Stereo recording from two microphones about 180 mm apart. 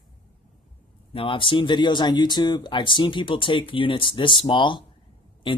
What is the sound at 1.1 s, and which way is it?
Speech, 30° left (ahead or behind).